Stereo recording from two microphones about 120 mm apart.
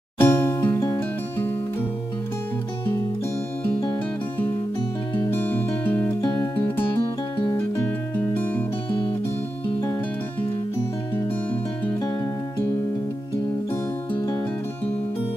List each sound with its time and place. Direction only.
0.2 s music: 20° left (ahead or behind)
5.1 s music: 20° left (ahead or behind)